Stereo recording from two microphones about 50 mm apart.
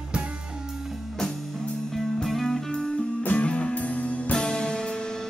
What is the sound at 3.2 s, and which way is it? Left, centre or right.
Music, left.